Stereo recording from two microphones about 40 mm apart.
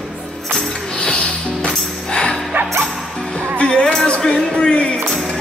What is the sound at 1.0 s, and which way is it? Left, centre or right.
Music, left.